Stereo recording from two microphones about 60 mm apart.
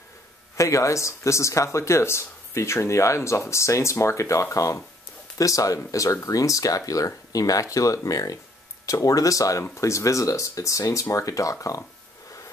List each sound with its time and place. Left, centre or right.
0.6 s speech: left
5.4 s speech: left